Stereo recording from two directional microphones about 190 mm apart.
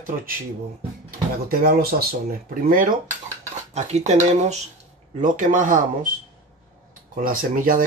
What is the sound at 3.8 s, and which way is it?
Speech, 35° right (ahead or behind).